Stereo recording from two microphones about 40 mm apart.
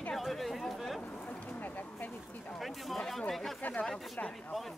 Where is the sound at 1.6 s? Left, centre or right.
Left.